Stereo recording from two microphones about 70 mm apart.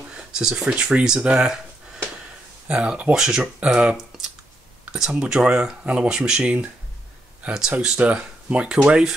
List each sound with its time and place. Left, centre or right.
0.1 s speech: centre
2.7 s speech: centre
5.1 s speech: centre